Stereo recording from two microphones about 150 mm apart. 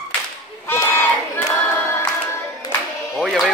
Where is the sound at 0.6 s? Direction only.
15° left (ahead or behind).